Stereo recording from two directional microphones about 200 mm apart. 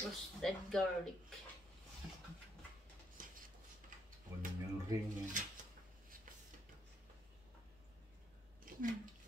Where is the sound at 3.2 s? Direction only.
45° right (ahead or behind).